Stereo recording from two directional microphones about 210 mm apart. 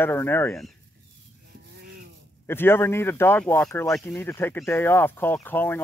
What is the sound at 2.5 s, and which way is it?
Speech, 10° left (ahead or behind).